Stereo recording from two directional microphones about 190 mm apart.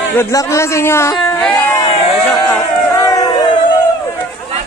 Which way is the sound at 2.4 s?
15° left (ahead or behind).